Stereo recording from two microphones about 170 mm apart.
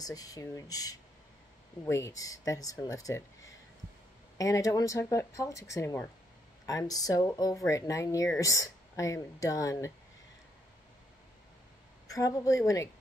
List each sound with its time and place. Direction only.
0.0 s speech: 20° left (ahead or behind)
4.4 s speech: 20° left (ahead or behind)
12.1 s speech: 20° left (ahead or behind)